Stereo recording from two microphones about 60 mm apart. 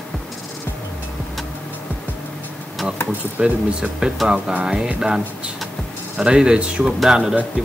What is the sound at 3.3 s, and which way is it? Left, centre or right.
Speech, right.